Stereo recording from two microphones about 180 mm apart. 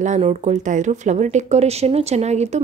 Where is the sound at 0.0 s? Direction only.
40° right (ahead or behind).